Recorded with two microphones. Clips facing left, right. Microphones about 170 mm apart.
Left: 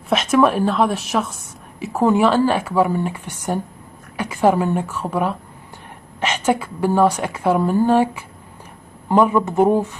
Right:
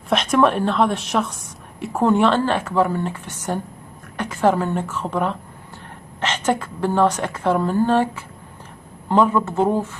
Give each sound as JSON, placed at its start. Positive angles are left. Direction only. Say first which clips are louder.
{"t": 0.1, "sound": "a woman's voice", "louder": "left 1 dB", "side_deg": 5}